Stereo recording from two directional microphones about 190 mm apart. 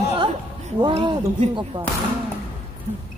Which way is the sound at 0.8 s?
25° right (ahead or behind).